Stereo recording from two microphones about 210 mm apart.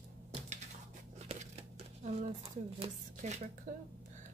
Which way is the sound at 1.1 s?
30° right (ahead or behind).